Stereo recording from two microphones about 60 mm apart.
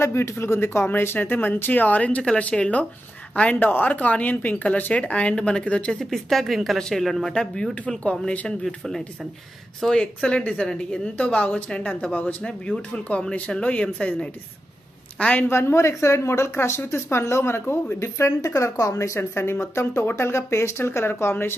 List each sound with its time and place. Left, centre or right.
0.0 s speech: left
3.5 s speech: left
5.9 s speech: centre
7.3 s speech: centre
8.6 s speech: centre
10.2 s speech: left
15.3 s speech: left